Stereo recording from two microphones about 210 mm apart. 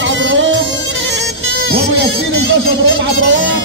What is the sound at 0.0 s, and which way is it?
Music, 60° right (ahead or behind).